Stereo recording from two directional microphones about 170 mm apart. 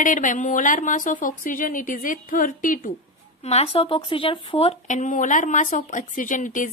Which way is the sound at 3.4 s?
40° left (ahead or behind).